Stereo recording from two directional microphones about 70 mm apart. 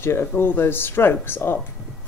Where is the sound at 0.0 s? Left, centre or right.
Left.